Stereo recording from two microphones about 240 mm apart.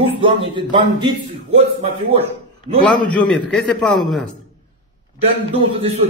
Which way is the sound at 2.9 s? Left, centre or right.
Centre.